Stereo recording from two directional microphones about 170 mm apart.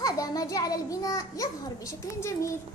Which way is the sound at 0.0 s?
20° left (ahead or behind).